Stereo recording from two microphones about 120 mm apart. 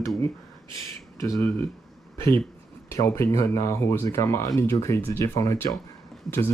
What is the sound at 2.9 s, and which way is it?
Speech, 25° left (ahead or behind).